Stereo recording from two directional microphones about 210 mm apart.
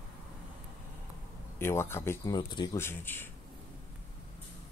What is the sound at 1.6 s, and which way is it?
Speech, 10° left (ahead or behind).